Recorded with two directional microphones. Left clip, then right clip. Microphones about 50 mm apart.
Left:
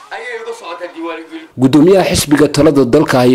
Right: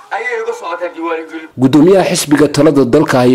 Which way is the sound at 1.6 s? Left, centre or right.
Centre.